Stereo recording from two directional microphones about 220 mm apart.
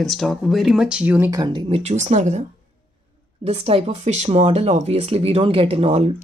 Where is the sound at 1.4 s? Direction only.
20° right (ahead or behind).